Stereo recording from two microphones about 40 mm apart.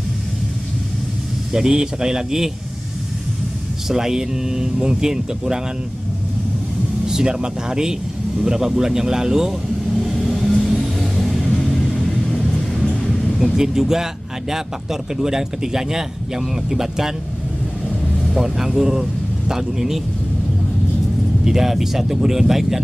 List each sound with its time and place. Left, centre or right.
1.5 s a man's voice: centre
3.9 s a man's voice: centre
7.1 s a man's voice: centre
9.9 s vehicle: centre
13.6 s a man's voice: centre
18.2 s speech: centre
21.5 s a man's voice: centre